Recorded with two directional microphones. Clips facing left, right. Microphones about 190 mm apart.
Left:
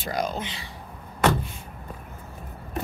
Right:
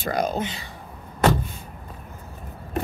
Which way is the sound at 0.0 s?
50° right (ahead or behind).